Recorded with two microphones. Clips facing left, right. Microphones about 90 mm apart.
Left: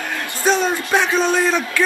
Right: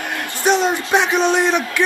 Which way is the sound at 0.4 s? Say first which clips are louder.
Right 1 dB; 20° right (ahead or behind).